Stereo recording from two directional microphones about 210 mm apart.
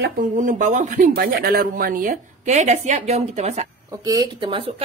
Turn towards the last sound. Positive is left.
turn(degrees=-25)  # may be behind; listen again after turning